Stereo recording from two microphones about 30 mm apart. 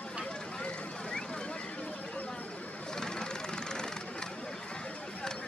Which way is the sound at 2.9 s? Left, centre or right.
Left.